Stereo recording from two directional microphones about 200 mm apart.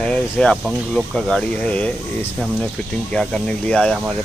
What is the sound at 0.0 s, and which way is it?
Speech, 5° left (ahead or behind).